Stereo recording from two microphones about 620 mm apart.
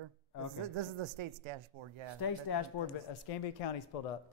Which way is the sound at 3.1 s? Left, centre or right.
Left.